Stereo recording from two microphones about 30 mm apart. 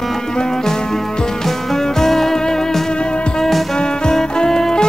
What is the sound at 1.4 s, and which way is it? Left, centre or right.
Music, centre.